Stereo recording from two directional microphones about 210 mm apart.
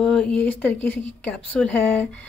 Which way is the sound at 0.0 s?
5° left (ahead or behind).